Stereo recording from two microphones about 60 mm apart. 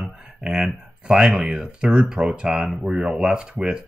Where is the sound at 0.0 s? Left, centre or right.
Centre.